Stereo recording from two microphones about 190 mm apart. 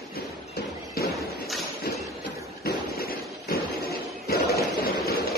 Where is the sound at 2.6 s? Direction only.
50° left (ahead or behind).